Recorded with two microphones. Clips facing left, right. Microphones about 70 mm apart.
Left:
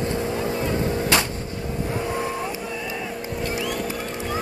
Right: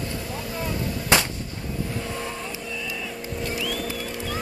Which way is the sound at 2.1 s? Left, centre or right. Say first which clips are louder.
Left 6 dB; left.